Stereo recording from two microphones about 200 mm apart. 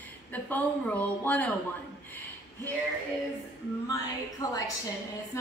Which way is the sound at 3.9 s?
15° left (ahead or behind).